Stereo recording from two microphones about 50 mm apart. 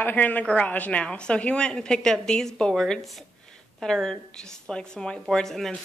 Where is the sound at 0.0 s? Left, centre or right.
Left; by 2.7 s centre.